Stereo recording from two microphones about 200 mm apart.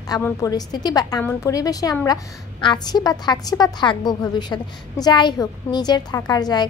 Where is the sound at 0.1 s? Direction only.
15° left (ahead or behind).